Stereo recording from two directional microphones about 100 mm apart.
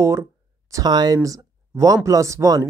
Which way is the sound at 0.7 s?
40° right (ahead or behind).